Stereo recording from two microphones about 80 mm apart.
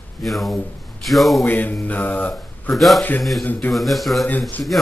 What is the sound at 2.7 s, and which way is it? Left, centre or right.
Speech, centre.